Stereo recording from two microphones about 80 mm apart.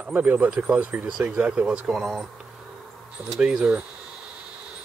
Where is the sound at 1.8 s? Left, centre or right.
Centre.